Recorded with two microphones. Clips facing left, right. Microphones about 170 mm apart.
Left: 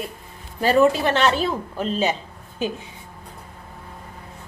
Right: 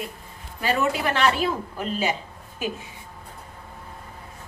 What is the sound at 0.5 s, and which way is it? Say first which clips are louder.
Speech: left 7 dB; 35° left (ahead or behind).